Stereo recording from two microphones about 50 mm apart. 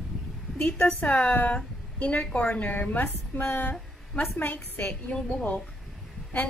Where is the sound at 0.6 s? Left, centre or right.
Left.